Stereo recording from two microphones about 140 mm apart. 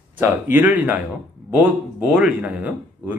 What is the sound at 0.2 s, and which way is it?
Speech, 15° right (ahead or behind).